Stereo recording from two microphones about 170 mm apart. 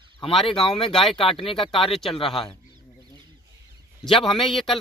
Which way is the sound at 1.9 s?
Centre (ahead or behind).